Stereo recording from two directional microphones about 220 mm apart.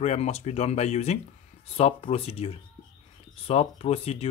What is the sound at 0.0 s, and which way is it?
Speech, 30° left (ahead or behind).